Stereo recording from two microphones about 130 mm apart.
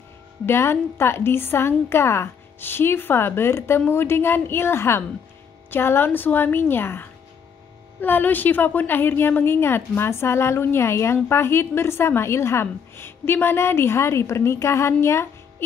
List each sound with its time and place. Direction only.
0.5 s a woman's voice: 20° left (ahead or behind)